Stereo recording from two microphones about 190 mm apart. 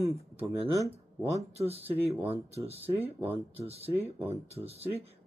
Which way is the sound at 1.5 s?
30° right (ahead or behind).